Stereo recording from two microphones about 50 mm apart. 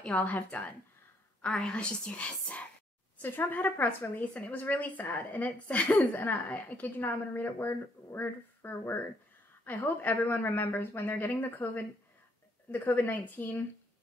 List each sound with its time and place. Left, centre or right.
0.1 s a woman's voice: left
1.4 s a woman's voice: centre
3.2 s a woman's voice: left
4.1 s a woman's voice: left